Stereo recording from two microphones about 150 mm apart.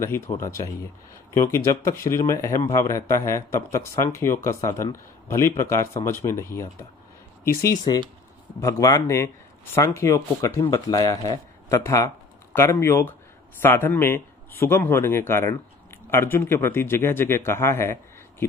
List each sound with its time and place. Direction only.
0.4 s a man's voice: 20° left (ahead or behind)